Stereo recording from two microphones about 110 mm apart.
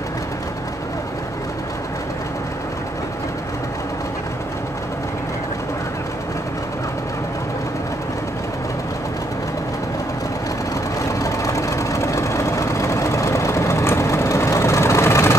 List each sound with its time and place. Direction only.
11.0 s vehicle: 30° left (ahead or behind)